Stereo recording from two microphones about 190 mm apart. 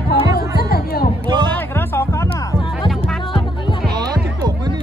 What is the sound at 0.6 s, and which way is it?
Music, 55° left (ahead or behind).